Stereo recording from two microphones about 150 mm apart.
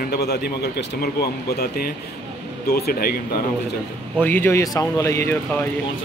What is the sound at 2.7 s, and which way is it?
Speech, 90° left.